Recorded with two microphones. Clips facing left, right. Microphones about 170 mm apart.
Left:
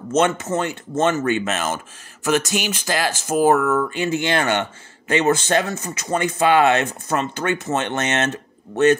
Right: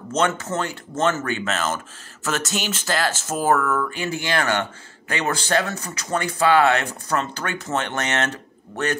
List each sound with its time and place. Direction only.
0.1 s speech: 20° left (ahead or behind)